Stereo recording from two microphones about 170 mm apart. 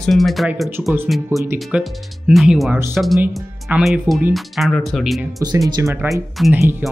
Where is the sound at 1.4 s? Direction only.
15° right (ahead or behind).